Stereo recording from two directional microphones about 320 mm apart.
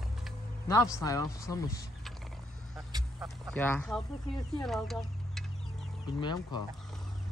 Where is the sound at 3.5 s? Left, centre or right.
Centre.